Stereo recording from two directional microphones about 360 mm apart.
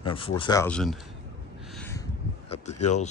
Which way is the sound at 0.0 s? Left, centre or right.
Centre.